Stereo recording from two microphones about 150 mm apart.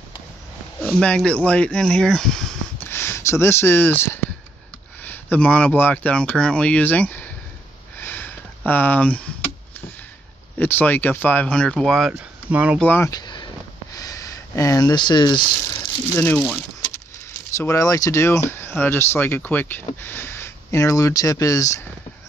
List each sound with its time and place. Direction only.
0.7 s speech: 5° left (ahead or behind)
2.8 s speech: 15° left (ahead or behind)
8.0 s a sound: 10° left (ahead or behind)
10.6 s speech: 10° left (ahead or behind)
12.1 s speech: 10° right (ahead or behind)
12.7 s speech: 10° left (ahead or behind)
13.1 s a sound: 30° left (ahead or behind)
16.3 s speech: 5° left (ahead or behind)
17.6 s speech: 20° left (ahead or behind)